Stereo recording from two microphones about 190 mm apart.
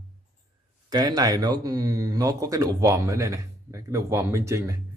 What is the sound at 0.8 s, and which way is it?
Speech, 20° right (ahead or behind).